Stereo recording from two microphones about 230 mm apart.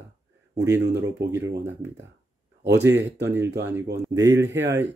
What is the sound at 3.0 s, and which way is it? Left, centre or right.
Speech, right.